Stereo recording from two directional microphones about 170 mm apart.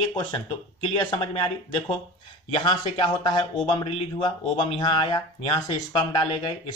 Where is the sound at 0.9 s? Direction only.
30° left (ahead or behind).